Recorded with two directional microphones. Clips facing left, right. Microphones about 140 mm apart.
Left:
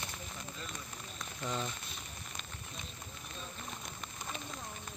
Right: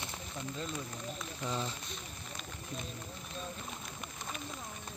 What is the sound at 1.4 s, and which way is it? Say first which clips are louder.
Speech: right 1 dB; 10° right (ahead or behind).